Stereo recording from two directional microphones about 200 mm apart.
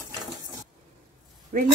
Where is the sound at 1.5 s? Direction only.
45° right (ahead or behind).